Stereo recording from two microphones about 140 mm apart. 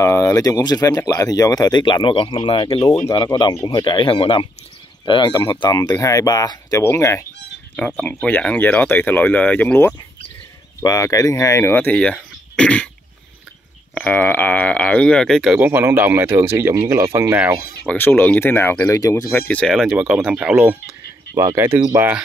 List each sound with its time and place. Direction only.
0.0 s speech: 20° left (ahead or behind)
7.7 s speech: 10° left (ahead or behind)
13.9 s speech: 10° left (ahead or behind)
15.6 s speech: 15° right (ahead or behind)
17.8 s speech: 15° left (ahead or behind)
19.3 s speech: 10° left (ahead or behind); by 22.2 s 10° right (ahead or behind)